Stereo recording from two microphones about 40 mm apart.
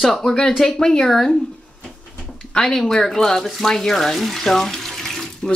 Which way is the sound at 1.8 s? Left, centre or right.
Left.